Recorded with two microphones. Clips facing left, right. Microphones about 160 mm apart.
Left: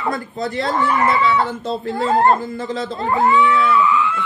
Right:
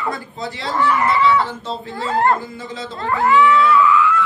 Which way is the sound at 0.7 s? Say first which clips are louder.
Right 1 dB; 25° left (ahead or behind).